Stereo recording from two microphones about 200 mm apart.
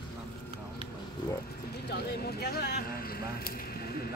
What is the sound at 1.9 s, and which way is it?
Speech, 50° left (ahead or behind).